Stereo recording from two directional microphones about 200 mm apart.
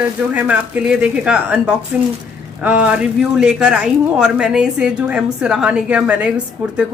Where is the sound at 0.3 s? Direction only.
5° right (ahead or behind).